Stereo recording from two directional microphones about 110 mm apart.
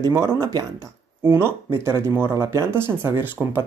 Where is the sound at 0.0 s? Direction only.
25° right (ahead or behind).